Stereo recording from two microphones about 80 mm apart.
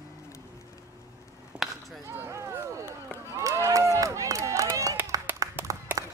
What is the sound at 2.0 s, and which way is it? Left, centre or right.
Run, right.